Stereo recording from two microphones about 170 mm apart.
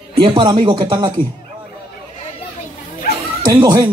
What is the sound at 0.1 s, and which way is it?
Music, 25° right (ahead or behind).